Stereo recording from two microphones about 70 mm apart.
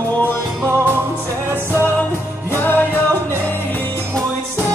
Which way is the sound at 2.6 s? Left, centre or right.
Left.